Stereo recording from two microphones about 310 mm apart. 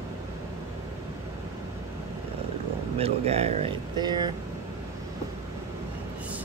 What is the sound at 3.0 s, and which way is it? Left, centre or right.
Speech, centre.